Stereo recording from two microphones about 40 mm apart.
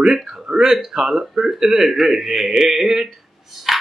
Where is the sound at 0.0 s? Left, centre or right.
Centre.